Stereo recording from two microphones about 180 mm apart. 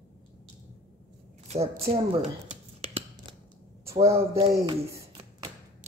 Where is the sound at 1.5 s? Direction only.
35° right (ahead or behind).